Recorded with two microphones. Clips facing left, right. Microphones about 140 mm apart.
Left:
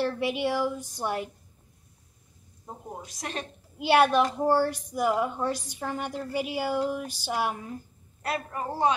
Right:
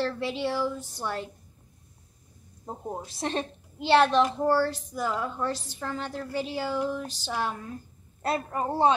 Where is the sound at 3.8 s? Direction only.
10° left (ahead or behind).